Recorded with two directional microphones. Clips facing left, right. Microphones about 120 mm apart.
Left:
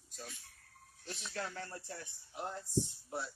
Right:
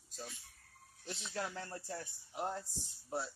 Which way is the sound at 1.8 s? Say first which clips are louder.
Right 3 dB; 35° right (ahead or behind).